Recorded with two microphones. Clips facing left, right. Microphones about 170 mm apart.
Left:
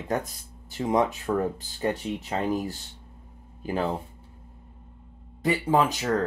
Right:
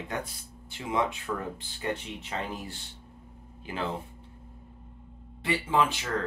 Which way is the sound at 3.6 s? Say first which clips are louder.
Left 6 dB; 40° left (ahead or behind).